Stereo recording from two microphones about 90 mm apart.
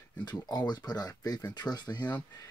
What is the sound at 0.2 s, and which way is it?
Speech, 50° left (ahead or behind).